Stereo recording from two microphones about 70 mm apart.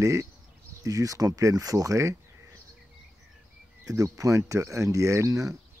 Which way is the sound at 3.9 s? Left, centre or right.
Right.